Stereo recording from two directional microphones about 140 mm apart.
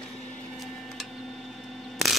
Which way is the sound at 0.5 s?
Centre (ahead or behind).